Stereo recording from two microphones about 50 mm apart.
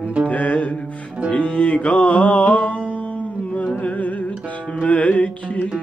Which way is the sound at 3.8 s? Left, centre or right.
Left.